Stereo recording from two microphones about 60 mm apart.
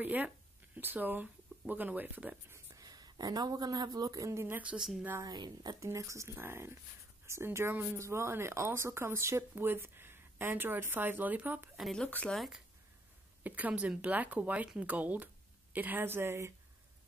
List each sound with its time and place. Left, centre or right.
0.0 s speech: right
2.8 s speech: right
4.4 s speech: right
5.2 s speech: right
5.9 s speech: right
6.2 s speech: right
7.7 s speech: right
8.0 s speech: right
12.4 s speech: centre
13.4 s speech: right